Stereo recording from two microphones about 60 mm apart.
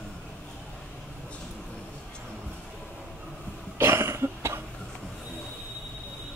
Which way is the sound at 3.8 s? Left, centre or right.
Right.